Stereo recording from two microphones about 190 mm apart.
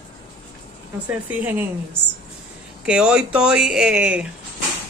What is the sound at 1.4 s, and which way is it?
Speech, 10° right (ahead or behind).